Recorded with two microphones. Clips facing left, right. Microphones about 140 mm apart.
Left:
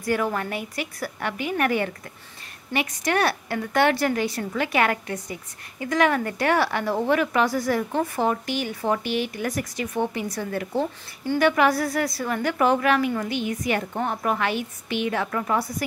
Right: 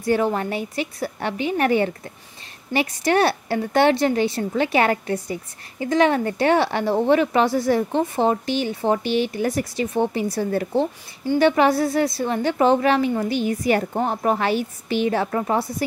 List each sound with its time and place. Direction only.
0.0 s a woman's voice: 25° right (ahead or behind)